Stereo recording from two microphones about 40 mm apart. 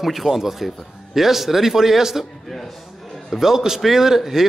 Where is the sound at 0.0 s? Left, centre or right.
Centre.